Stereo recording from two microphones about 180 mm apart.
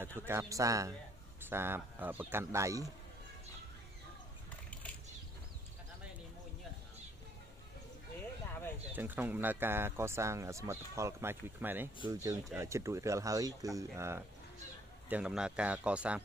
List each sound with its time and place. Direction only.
0.0 s speech: 10° right (ahead or behind)
8.9 s speech: 10° right (ahead or behind)